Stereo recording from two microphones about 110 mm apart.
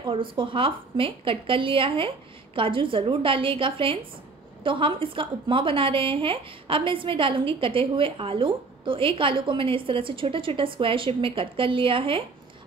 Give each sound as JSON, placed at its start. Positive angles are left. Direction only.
{"t": 0.0, "sound": "a woman's voice", "side_deg": -50}